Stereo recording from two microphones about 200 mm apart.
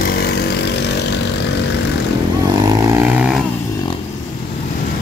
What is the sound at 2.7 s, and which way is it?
Vehicle, 10° right (ahead or behind).